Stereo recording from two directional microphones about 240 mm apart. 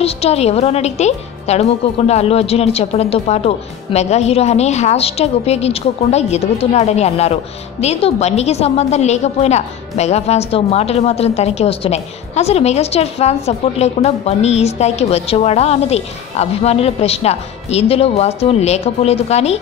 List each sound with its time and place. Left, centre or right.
0.0 s a woman's voice: left